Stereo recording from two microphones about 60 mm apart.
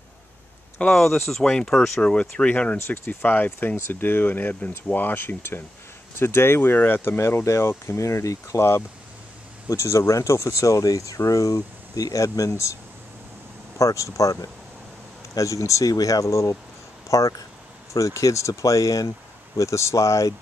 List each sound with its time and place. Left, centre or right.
0.8 s speech: centre; by 3.5 s left
3.5 s speech: left
9.7 s speech: left
13.7 s speech: left